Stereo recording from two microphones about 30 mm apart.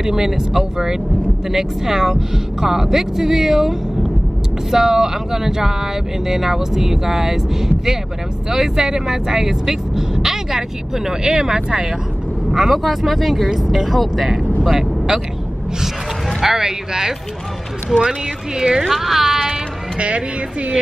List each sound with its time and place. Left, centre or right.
0.0 s speech: centre
12.4 s speech: centre
14.6 s speech: centre
15.8 s a sound: centre
16.6 s speech: centre
18.9 s speech: centre
20.0 s speech: right